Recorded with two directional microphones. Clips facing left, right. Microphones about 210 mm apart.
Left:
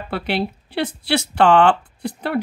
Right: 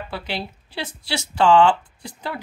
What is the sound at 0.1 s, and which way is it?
A woman's voice, 60° left (ahead or behind).